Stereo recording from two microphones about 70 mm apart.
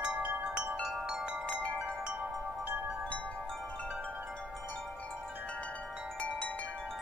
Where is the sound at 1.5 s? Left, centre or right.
Centre.